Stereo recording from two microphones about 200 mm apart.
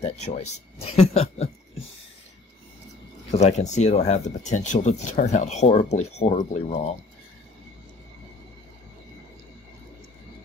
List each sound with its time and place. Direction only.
0.0 s speech: 35° left (ahead or behind)
3.3 s speech: 35° left (ahead or behind)